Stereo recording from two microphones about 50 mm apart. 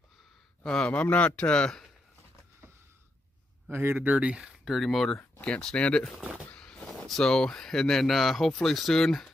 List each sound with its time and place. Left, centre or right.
0.7 s speech: centre
0.9 s speech: left
3.7 s speech: right
4.6 s speech: centre
5.1 s speech: centre
6.5 s a sound: left
7.0 s speech: centre